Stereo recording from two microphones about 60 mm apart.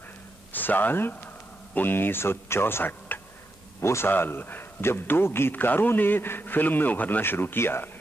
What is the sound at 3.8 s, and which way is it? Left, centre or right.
A man's voice, left.